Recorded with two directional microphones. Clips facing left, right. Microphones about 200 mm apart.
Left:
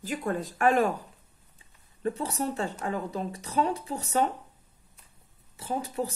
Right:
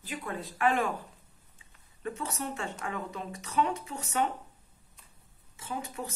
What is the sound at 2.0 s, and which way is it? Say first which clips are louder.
Speech: left 6 dB; 35° left (ahead or behind).